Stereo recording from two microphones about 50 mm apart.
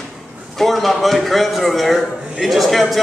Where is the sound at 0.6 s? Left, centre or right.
Centre.